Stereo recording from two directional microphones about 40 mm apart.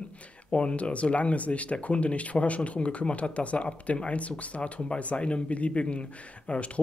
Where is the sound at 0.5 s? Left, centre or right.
Left.